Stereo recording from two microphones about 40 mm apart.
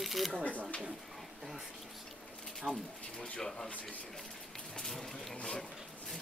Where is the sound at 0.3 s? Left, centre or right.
Left.